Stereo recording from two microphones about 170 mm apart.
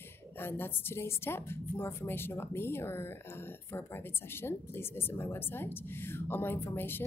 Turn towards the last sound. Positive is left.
turn(degrees=10)  # may be behind; listen again after turning